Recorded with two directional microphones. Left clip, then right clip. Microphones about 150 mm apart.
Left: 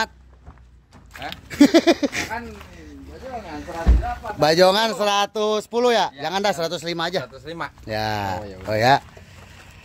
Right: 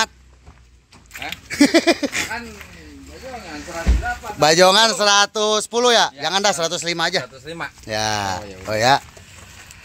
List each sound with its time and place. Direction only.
1.1 s speech: centre (ahead or behind)
4.4 s speech: 5° right (ahead or behind)
7.4 s speech: 50° right (ahead or behind)
7.8 s speech: centre (ahead or behind)